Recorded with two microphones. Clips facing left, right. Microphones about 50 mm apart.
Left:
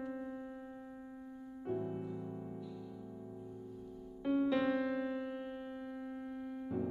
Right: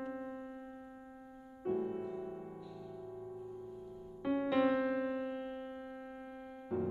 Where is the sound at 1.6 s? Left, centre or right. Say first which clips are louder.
Right 3 dB; centre.